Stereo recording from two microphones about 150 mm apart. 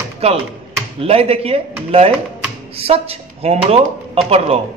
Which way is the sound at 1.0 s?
40° right (ahead or behind).